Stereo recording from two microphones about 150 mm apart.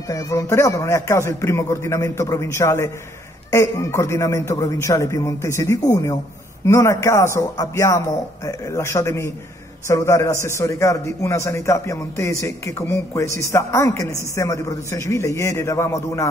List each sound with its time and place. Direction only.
0.1 s a man's voice: 20° left (ahead or behind)